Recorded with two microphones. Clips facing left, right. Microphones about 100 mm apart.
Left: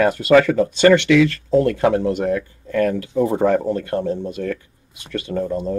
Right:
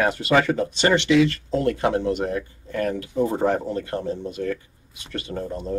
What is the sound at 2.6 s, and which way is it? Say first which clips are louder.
Speech: left 7 dB; 55° left (ahead or behind).